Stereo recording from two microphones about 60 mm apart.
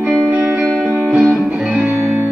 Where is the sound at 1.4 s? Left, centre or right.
Right.